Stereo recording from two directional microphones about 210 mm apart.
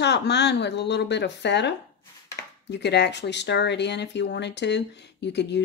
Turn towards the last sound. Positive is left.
turn(degrees=55)  # may be behind; listen again after turning